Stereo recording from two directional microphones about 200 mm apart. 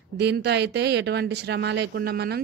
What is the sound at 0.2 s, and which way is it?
Speech, 55° right (ahead or behind).